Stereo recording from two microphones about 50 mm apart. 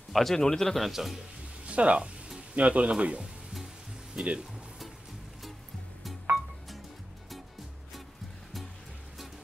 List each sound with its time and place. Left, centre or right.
0.1 s a man's voice: centre
1.7 s speech: right